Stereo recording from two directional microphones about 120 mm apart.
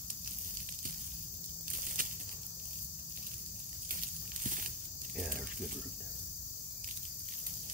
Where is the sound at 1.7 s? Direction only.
90° right.